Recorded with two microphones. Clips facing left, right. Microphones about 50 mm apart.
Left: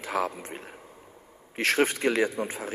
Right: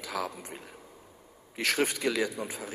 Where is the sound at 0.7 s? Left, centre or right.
Left.